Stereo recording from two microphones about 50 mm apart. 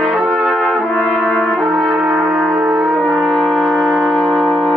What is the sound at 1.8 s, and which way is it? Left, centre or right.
Brass instrument, right.